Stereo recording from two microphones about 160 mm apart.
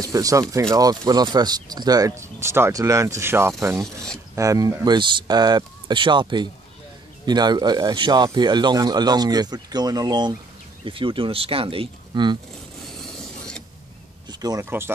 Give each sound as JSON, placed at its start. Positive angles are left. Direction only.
{"t": 0.0, "sound": "speech", "side_deg": -20}
{"t": 3.8, "sound": "speech", "side_deg": 5}
{"t": 4.4, "sound": "speech", "side_deg": -20}
{"t": 14.3, "sound": "speech", "side_deg": -25}